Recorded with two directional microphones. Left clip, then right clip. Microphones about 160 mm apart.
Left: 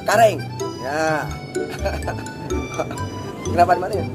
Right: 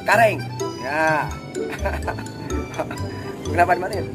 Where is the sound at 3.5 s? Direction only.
15° left (ahead or behind).